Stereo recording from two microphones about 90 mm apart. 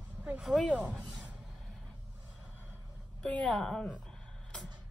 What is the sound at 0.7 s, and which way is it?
Speech, 15° right (ahead or behind).